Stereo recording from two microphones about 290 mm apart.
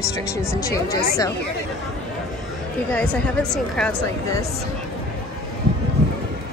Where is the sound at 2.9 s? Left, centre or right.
Centre.